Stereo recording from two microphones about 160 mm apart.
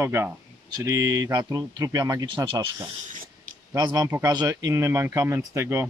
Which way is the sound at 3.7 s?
25° right (ahead or behind).